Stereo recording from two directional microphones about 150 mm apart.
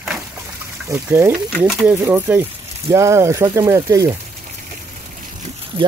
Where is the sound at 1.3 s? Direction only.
5° right (ahead or behind).